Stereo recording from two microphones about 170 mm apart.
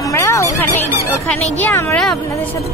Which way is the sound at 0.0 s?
15° left (ahead or behind).